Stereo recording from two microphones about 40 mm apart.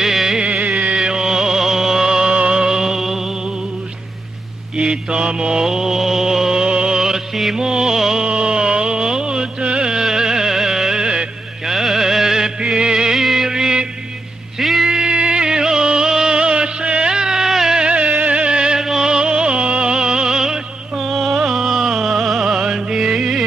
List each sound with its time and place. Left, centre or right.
0.0 s music: centre
0.4 s music: right
0.9 s music: centre
4.7 s mantra: right
7.5 s music: centre
8.3 s music: right
11.6 s music: centre
13.2 s music: centre
14.6 s a sound: centre
14.9 s music: right
17.8 s music: right; by 21.0 s centre
21.0 s music: centre